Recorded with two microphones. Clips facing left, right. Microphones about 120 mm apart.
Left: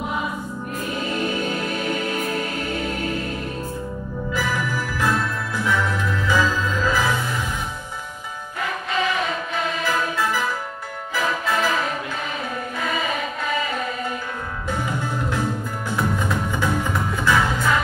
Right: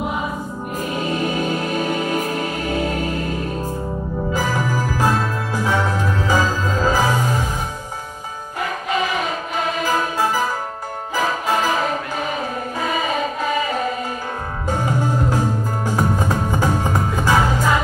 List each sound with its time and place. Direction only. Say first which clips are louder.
1.8 s music: right 4 dB; 40° right (ahead or behind)
4.3 s music: right 3 dB; 40° right (ahead or behind)
9.8 s music: right 3 dB; 40° right (ahead or behind)
14.7 s music: right 5 dB; 40° right (ahead or behind)